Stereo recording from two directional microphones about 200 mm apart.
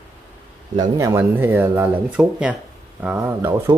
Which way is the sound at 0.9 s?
15° right (ahead or behind).